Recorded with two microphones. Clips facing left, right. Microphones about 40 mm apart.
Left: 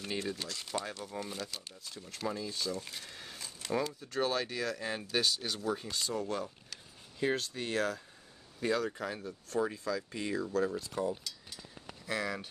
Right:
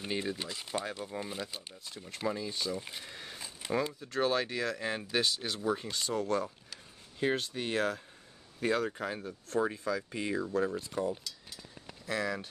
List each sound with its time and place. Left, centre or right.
0.0 s speech: centre
6.7 s a sound: centre
8.5 s speech: centre
11.1 s mechanisms: centre
12.1 s speech: centre